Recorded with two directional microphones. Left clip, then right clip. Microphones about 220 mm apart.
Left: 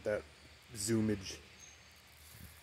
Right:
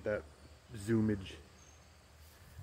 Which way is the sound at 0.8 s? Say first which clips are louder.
Right 1 dB; 25° left (ahead or behind).